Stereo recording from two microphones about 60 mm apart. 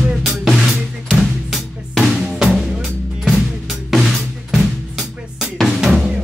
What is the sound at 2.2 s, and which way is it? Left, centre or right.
Drum kit, centre.